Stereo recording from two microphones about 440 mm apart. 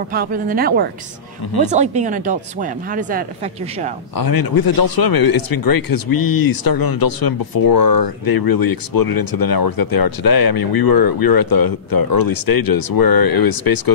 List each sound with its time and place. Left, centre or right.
0.1 s speech: centre
4.2 s speech: left